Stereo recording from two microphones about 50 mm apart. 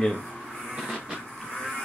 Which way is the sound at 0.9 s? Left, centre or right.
Centre.